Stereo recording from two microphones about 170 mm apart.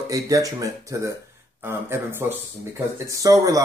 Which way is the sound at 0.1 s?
20° right (ahead or behind).